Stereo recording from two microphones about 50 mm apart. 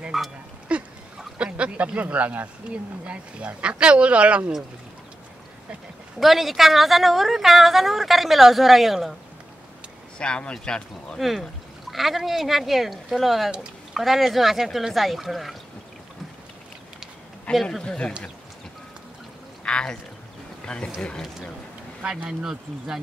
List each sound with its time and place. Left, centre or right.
0.1 s speech: centre
0.7 s speech: right
6.1 s a woman's voice: centre
10.1 s speech: left
11.1 s a woman's voice: centre
17.5 s speech: left
19.6 s speech: centre
22.4 s speech: centre